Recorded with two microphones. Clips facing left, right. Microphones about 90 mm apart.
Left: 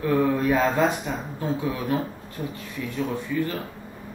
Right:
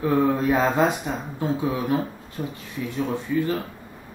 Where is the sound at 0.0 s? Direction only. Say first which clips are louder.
Right 1 dB; 20° right (ahead or behind).